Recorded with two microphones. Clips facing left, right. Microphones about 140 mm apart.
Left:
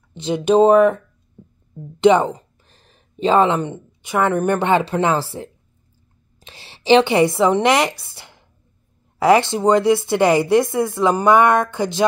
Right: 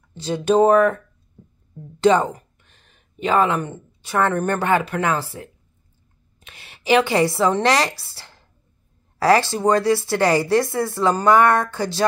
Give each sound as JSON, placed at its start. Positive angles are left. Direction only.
{"t": 0.1, "sound": "a woman's voice", "side_deg": 20}
{"t": 2.6, "sound": "a woman's voice", "side_deg": 35}